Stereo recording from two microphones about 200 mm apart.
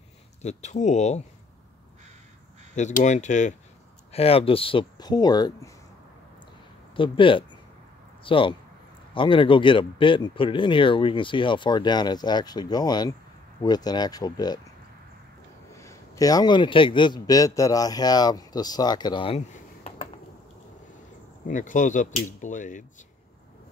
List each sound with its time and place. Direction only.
0.4 s speech: 35° left (ahead or behind)
2.7 s speech: 35° left (ahead or behind); by 5.7 s 20° left (ahead or behind)
7.0 s speech: 25° left (ahead or behind)
15.7 s a man's voice: 15° left (ahead or behind); by 20.1 s 30° left (ahead or behind)
21.5 s speech: 40° left (ahead or behind)